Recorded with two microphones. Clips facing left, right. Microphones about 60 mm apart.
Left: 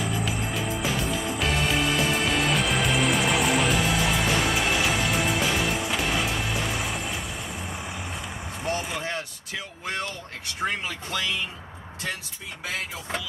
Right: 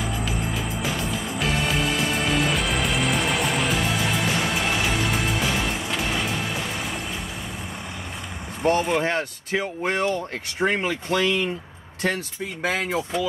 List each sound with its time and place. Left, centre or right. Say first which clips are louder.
0.0 s music: right 1 dB; centre
8.6 s speech: right 9 dB; right
12.6 s speech: right 8 dB; right